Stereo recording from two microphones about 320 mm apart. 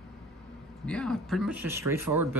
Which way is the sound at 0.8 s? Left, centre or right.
Centre.